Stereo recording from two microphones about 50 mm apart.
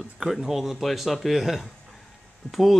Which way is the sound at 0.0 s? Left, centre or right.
Centre.